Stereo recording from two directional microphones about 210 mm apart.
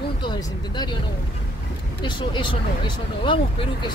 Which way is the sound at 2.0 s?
20° left (ahead or behind).